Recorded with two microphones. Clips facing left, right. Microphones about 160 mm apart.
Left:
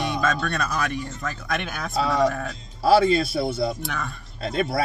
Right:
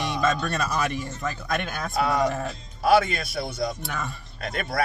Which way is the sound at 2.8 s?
30° left (ahead or behind).